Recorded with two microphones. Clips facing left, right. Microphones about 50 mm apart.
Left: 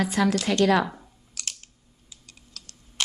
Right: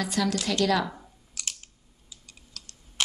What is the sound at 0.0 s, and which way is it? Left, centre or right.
Speech, left.